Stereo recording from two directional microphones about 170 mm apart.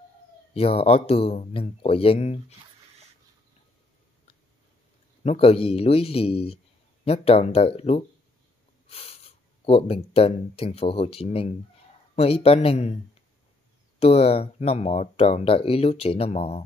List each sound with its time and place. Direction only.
0.6 s speech: 35° left (ahead or behind)
5.2 s speech: 35° left (ahead or behind)